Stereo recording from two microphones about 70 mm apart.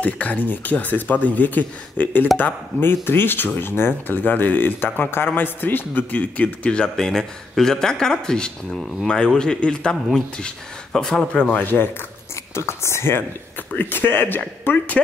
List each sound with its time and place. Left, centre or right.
0.0 s speech: left; by 11.4 s centre
11.5 s speech: left
12.5 s speech: left
13.7 s speech: left